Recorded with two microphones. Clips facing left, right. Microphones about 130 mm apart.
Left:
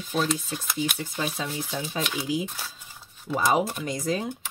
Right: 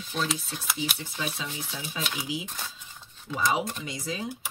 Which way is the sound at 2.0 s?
5° right (ahead or behind).